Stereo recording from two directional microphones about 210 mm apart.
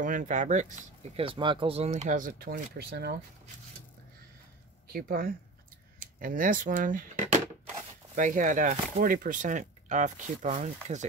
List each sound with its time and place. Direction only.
0.0 s speech: 35° right (ahead or behind)
4.9 s a woman's voice: 45° right (ahead or behind)